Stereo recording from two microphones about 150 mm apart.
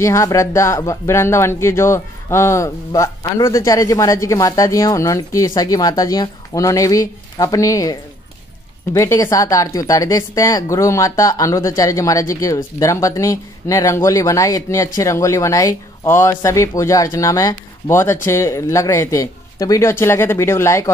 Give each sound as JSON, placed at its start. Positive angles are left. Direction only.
{"t": 0.0, "sound": "speech", "side_deg": 20}